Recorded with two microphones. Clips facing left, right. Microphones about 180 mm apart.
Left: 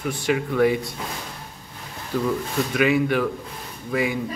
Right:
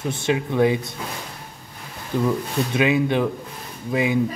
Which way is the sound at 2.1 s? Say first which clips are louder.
Right 2 dB; 20° right (ahead or behind).